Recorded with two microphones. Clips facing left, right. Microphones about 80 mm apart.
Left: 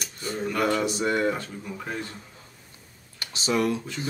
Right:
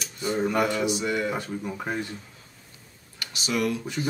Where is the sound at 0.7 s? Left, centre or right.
Left.